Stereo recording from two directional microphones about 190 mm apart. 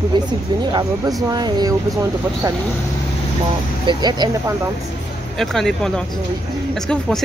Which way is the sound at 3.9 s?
20° right (ahead or behind).